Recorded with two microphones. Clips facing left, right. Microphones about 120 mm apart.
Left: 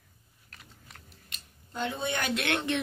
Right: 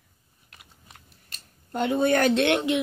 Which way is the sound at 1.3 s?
55° right (ahead or behind).